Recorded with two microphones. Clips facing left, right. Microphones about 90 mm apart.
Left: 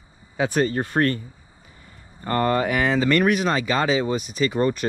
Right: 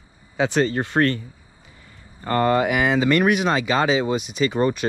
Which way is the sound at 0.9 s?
60° right (ahead or behind).